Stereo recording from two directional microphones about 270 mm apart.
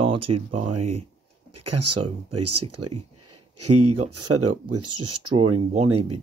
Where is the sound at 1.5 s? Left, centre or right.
Right.